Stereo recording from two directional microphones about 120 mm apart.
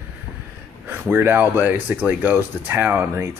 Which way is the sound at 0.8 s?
20° right (ahead or behind).